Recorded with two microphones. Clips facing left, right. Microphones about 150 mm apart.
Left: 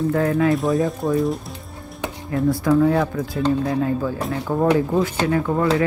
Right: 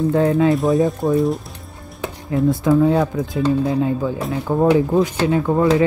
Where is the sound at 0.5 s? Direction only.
Centre (ahead or behind).